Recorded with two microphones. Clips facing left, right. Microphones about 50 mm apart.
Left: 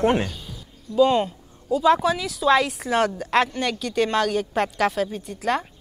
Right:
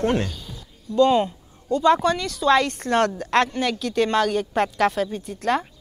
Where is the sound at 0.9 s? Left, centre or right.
Centre.